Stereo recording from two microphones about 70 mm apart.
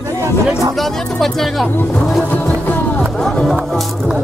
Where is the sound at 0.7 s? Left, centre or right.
Centre.